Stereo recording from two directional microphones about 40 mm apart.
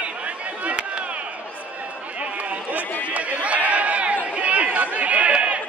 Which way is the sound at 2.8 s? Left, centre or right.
Left.